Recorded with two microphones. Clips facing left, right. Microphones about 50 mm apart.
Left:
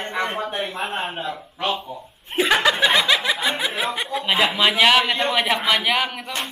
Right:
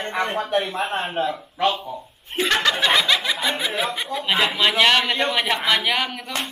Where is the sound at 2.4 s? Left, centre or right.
Centre.